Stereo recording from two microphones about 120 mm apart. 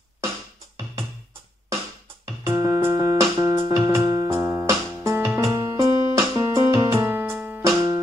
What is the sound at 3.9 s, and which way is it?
Music, 30° right (ahead or behind).